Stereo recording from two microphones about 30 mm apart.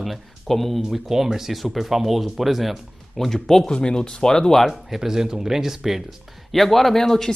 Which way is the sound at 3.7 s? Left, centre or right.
Left.